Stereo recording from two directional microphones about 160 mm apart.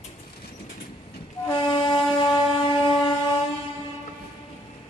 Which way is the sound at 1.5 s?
30° left (ahead or behind).